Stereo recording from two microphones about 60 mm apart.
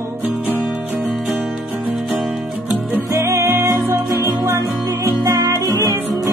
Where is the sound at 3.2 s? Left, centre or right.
Right.